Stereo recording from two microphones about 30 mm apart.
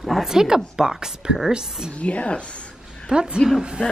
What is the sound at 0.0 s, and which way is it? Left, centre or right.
A woman's voice, centre.